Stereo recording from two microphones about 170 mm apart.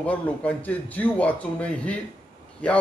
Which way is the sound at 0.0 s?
10° left (ahead or behind).